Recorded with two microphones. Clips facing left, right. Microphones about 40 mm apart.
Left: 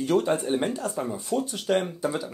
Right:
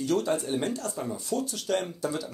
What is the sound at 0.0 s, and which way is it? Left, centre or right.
Speech, left.